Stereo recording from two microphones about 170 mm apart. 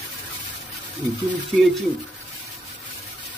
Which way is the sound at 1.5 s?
5° right (ahead or behind).